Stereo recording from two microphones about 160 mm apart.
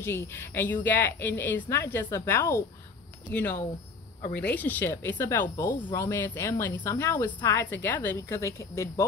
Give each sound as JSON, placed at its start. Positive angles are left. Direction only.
{"t": 0.0, "sound": "a woman's voice", "side_deg": 15}